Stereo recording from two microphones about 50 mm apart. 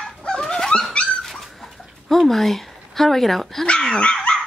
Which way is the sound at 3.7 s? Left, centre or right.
Centre.